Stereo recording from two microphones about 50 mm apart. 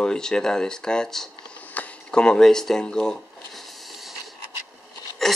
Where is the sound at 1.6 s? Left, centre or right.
Left.